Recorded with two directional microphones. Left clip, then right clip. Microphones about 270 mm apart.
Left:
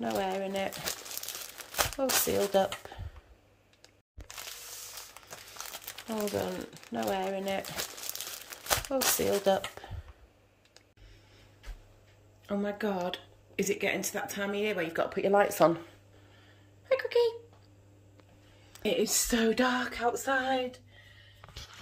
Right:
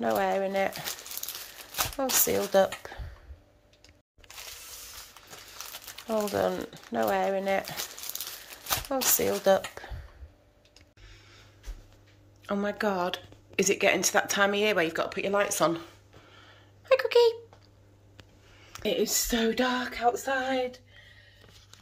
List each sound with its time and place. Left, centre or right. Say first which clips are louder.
0.0 s speech: right 6 dB; centre
2.0 s speech: right 3 dB; centre
6.0 s speech: right 6 dB; centre
8.8 s speech: right 4 dB; centre
12.4 s speech: right 4 dB; centre
15.0 s speech: left 1 dB; centre
16.3 s a sound: right 6 dB; centre
18.6 s speech: right 1 dB; centre